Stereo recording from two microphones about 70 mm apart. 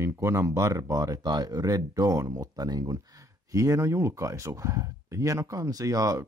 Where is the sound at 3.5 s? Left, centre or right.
Right.